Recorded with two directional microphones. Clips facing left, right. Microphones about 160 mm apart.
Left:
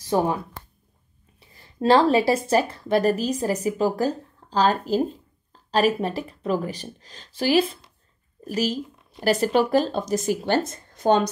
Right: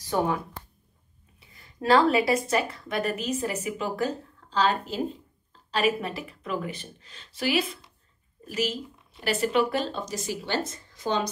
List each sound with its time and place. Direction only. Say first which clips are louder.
0.1 s speech: left 4 dB; 25° left (ahead or behind)
1.5 s speech: left 3 dB; 30° left (ahead or behind)
5.5 s a sound: left 7 dB; 40° left (ahead or behind)
5.9 s speech: left 6 dB; 35° left (ahead or behind); by 11.2 s 55° left (ahead or behind)